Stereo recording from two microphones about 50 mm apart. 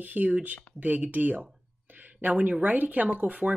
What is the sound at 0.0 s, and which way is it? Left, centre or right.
Speech, right.